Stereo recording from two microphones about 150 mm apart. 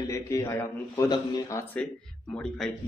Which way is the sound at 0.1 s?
20° left (ahead or behind).